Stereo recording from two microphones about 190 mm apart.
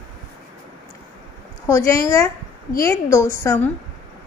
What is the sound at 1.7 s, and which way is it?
A woman's voice, 15° left (ahead or behind).